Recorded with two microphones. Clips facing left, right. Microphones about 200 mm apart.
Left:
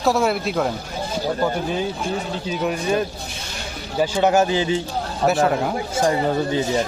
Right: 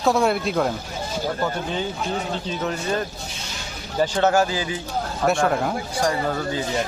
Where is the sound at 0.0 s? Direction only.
Centre (ahead or behind).